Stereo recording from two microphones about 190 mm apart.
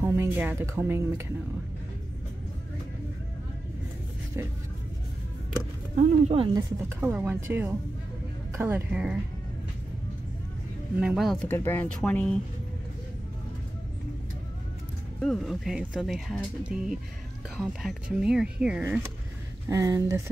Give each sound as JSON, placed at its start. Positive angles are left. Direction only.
{"t": 0.0, "sound": "speech", "side_deg": -10}
{"t": 5.9, "sound": "speech", "side_deg": -35}
{"t": 6.9, "sound": "speech", "side_deg": -10}
{"t": 11.0, "sound": "speech", "side_deg": -5}
{"t": 11.4, "sound": "speech", "side_deg": 10}
{"t": 15.1, "sound": "speech", "side_deg": 0}
{"t": 19.7, "sound": "speech", "side_deg": -15}